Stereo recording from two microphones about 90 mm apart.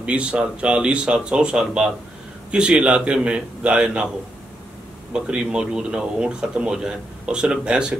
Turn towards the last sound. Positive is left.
turn(degrees=-10)  # may be behind; listen again after turning